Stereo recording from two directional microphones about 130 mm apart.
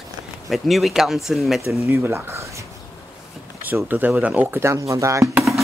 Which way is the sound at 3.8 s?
15° right (ahead or behind).